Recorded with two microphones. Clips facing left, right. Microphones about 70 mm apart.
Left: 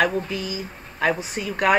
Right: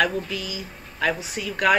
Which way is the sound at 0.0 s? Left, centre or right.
Left.